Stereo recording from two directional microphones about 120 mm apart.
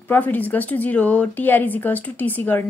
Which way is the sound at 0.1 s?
15° left (ahead or behind).